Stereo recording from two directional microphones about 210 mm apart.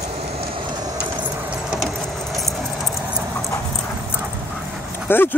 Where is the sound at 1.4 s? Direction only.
Centre (ahead or behind).